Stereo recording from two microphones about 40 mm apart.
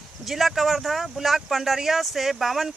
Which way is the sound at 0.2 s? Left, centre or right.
Centre.